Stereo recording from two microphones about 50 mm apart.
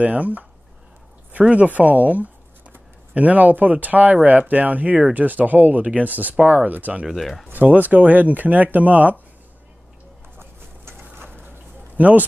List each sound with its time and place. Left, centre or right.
0.0 s speech: right
1.5 s speech: right
7.2 s speech: centre
7.5 s speech: right
10.3 s a sound: right
12.0 s speech: right